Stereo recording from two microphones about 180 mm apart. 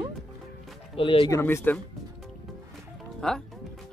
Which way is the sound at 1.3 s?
15° left (ahead or behind).